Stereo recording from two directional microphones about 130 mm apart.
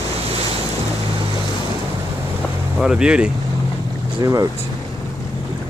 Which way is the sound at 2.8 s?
5° right (ahead or behind).